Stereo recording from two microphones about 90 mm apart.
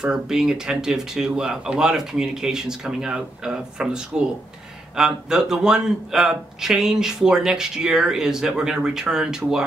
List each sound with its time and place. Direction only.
0.0 s a man's voice: 5° right (ahead or behind)